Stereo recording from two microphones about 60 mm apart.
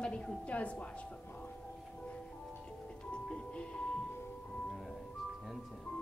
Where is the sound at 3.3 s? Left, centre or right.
Centre.